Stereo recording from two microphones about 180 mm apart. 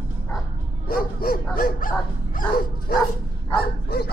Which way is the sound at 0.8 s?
55° left (ahead or behind).